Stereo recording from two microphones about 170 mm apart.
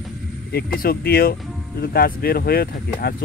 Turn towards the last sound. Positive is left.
turn(degrees=65)  # may be behind; listen again after turning